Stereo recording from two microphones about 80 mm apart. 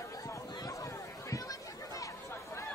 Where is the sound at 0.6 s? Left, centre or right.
Left.